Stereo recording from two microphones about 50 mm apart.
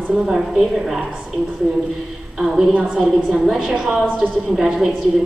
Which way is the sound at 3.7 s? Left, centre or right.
Centre.